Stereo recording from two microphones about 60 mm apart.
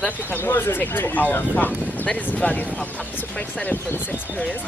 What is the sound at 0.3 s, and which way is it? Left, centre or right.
Speech, left.